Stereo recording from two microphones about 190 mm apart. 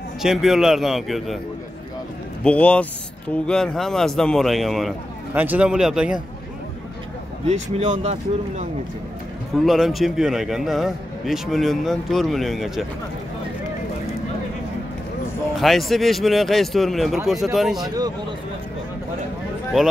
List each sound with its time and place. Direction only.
0.2 s a man's voice: centre (ahead or behind)
2.4 s a man's voice: 5° left (ahead or behind)
7.4 s speech: 35° right (ahead or behind)
9.5 s a man's voice: centre (ahead or behind)
15.5 s a man's voice: centre (ahead or behind)
17.8 s speech: 20° right (ahead or behind)